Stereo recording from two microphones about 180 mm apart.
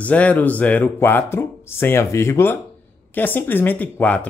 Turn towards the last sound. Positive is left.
turn(degrees=10)  # may be behind; listen again after turning